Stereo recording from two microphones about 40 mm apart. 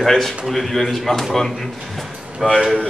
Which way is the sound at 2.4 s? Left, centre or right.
Centre.